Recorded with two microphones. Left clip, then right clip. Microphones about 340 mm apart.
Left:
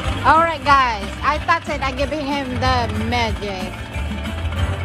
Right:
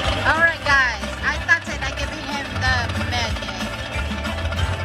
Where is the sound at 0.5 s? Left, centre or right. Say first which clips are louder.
Left 3 dB; centre.